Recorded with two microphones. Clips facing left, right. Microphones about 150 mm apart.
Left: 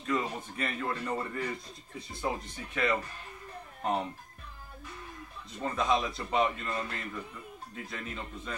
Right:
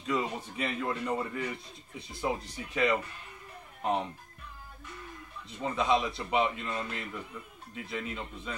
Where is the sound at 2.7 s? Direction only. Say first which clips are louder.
Right 2 dB; 15° right (ahead or behind).